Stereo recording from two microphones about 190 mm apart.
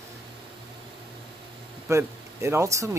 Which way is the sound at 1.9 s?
15° right (ahead or behind).